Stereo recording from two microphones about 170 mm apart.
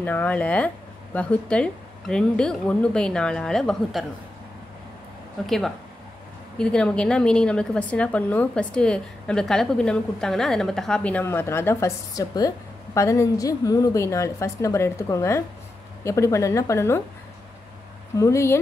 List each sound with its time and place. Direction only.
0.0 s a woman's voice: 10° left (ahead or behind)
6.6 s a woman's voice: 5° left (ahead or behind)
18.1 s a woman's voice: 15° left (ahead or behind)